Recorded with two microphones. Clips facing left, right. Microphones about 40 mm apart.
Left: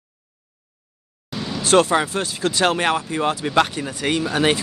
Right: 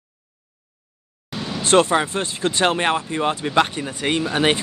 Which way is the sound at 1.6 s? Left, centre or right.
Right.